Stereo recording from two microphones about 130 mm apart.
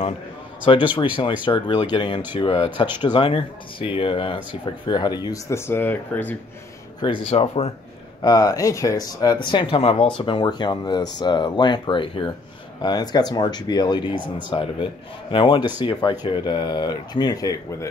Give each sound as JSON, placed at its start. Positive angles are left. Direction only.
{"t": 0.7, "sound": "speech", "side_deg": 45}
{"t": 5.5, "sound": "speech", "side_deg": 15}
{"t": 7.0, "sound": "speech", "side_deg": 45}
{"t": 8.2, "sound": "speech", "side_deg": 30}